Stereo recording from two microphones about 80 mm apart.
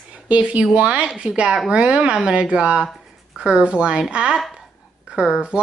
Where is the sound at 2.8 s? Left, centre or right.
Centre.